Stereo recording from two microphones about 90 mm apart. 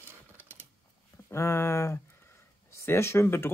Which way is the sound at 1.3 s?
30° left (ahead or behind).